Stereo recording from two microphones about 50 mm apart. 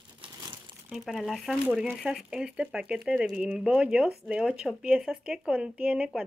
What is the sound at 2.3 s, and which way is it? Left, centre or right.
Speech, centre.